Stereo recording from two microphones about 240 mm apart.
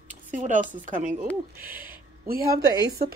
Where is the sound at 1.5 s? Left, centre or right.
Centre.